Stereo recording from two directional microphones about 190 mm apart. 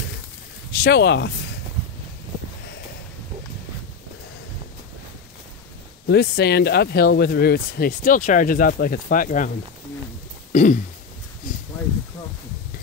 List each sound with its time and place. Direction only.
0.7 s speech: 55° left (ahead or behind)
6.0 s speech: 60° left (ahead or behind)
10.5 s throat clearing: 40° left (ahead or behind)
11.4 s a sound: 40° left (ahead or behind)